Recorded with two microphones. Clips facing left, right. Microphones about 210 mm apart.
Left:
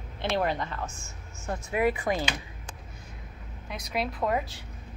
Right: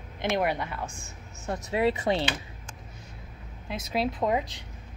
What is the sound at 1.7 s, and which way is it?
Speech, 25° right (ahead or behind).